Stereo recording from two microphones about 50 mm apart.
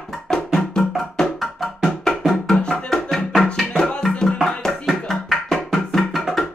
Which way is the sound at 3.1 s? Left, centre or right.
Centre.